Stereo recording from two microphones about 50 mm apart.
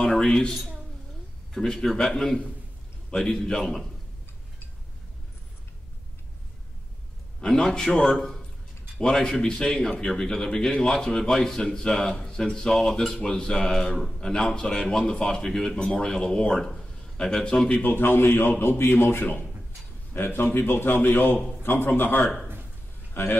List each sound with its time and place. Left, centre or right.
0.1 s a man's voice: centre
7.4 s a man's voice: centre
17.8 s speech: left
23.2 s speech: left